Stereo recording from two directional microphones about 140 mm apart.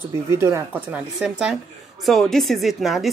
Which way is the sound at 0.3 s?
20° right (ahead or behind).